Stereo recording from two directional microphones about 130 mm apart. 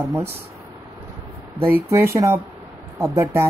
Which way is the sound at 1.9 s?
20° right (ahead or behind).